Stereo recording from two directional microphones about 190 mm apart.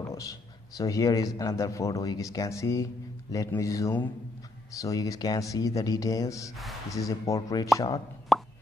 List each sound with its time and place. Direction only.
0.1 s speech: 15° left (ahead or behind)
8.3 s plop: centre (ahead or behind)